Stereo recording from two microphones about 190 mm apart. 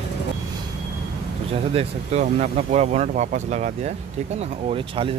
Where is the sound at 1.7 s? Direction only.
35° right (ahead or behind).